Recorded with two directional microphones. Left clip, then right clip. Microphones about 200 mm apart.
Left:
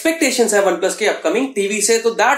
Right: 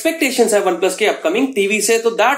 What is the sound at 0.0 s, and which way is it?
Speech, 30° right (ahead or behind).